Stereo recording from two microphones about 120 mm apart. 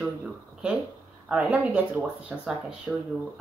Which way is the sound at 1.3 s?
10° right (ahead or behind).